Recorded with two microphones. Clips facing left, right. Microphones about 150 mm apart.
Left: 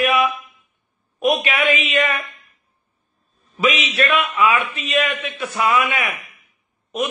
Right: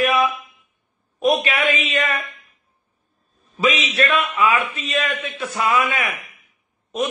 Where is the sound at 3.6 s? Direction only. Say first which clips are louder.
Even; 30° right (ahead or behind).